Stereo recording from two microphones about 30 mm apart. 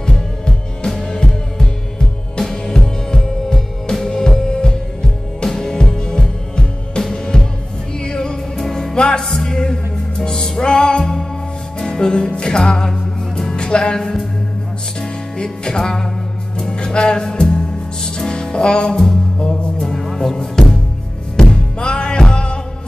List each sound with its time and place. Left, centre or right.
0.0 s music: centre
5.9 s music: left
8.0 s music: left
8.5 s music: centre
8.9 s music: left
13.6 s music: left
13.9 s music: centre
15.0 s music: left
18.9 s music: centre
19.3 s music: left
19.8 s music: centre
21.4 s music: left